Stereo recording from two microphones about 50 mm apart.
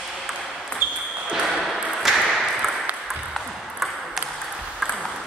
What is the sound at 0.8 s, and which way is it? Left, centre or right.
Basketball bounce, right.